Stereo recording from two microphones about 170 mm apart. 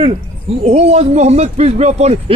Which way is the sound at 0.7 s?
40° right (ahead or behind).